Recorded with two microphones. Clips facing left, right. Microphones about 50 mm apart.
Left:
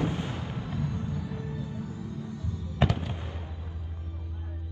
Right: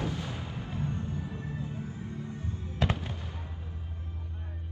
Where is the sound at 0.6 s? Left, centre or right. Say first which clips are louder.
Even; right.